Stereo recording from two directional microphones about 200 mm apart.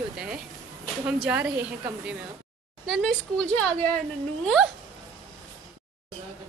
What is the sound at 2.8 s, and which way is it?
Speech, 5° left (ahead or behind).